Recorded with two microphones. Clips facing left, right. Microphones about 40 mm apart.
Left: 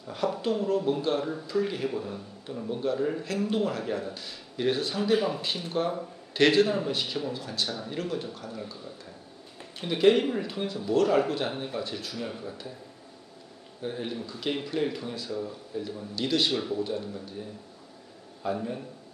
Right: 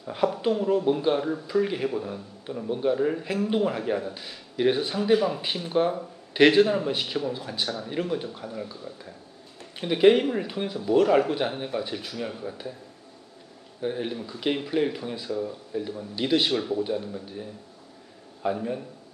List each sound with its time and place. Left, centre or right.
0.0 s speech: centre
5.1 s speech: centre
5.6 s speech: centre
13.7 s speech: centre
16.5 s speech: centre